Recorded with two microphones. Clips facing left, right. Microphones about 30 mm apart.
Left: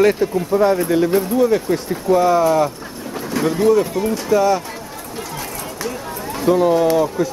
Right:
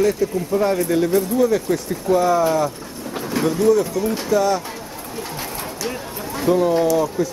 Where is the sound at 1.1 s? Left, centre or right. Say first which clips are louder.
Left 2 dB; left.